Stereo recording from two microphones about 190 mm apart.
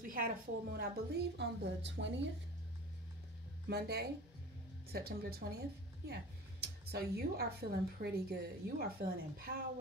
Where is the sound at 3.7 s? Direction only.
55° right (ahead or behind).